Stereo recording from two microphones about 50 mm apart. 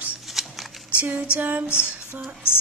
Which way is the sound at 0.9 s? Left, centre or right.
Right.